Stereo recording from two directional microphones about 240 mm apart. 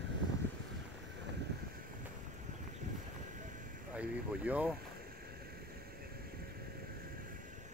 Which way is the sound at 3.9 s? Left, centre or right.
Centre.